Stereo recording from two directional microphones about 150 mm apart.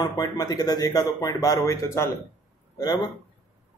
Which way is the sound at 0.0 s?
25° left (ahead or behind).